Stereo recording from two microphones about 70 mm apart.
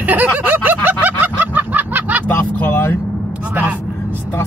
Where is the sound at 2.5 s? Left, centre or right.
Left.